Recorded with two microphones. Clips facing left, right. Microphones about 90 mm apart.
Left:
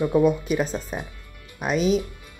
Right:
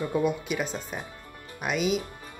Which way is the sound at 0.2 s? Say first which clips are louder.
Left 7 dB; 40° left (ahead or behind).